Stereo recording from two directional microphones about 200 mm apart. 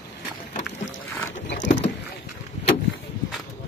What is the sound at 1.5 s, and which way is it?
Patter, 65° left (ahead or behind).